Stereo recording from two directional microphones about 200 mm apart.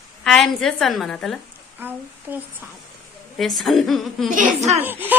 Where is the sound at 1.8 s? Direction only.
10° right (ahead or behind).